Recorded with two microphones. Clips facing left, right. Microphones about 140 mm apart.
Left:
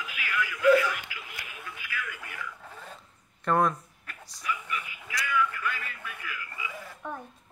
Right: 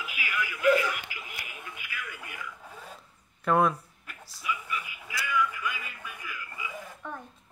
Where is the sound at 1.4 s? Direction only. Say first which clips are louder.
Left 1 dB; 15° right (ahead or behind).